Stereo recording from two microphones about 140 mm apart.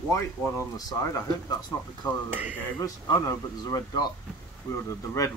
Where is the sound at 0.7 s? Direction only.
25° left (ahead or behind).